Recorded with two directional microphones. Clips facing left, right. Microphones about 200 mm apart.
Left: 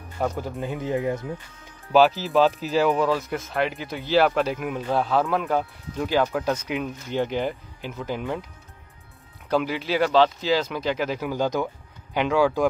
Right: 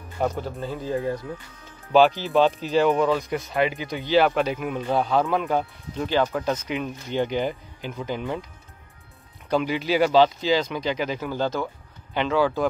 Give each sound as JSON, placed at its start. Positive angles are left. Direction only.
{"t": 0.4, "sound": "speech", "side_deg": 15}
{"t": 1.9, "sound": "speech", "side_deg": 5}
{"t": 9.5, "sound": "speech", "side_deg": 0}